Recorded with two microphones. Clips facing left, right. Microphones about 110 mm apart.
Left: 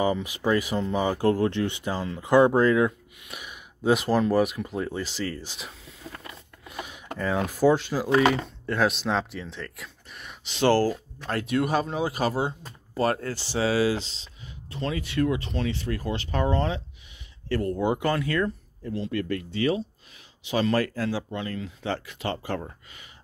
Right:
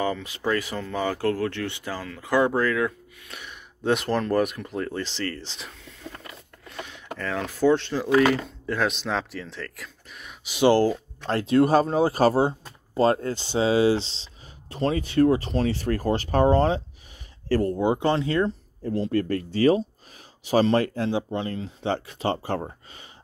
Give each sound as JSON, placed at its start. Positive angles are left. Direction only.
{"t": 0.0, "sound": "speech", "side_deg": 15}
{"t": 11.2, "sound": "speech", "side_deg": -30}
{"t": 12.9, "sound": "speech", "side_deg": -25}
{"t": 17.7, "sound": "speech", "side_deg": -25}
{"t": 18.9, "sound": "speech", "side_deg": -40}